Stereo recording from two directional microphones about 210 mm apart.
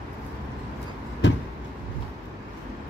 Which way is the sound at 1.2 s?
55° left (ahead or behind).